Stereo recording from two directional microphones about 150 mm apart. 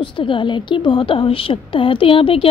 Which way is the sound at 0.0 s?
35° left (ahead or behind).